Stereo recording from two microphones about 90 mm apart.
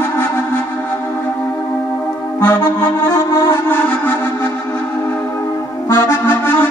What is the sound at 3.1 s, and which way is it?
Music, 30° left (ahead or behind).